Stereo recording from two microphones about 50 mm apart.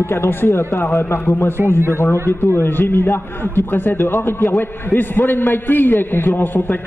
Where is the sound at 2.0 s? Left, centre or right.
Left.